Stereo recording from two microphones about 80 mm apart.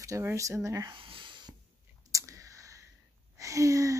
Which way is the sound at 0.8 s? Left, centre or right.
Right.